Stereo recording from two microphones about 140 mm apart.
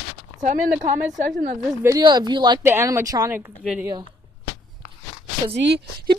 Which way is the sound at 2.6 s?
20° right (ahead or behind).